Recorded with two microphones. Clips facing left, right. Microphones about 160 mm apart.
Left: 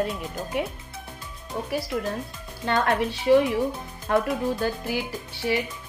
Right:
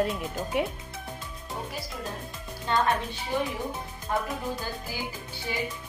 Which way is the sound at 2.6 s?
80° left.